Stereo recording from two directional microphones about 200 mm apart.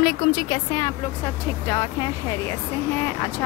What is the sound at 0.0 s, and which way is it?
Speech, 20° left (ahead or behind).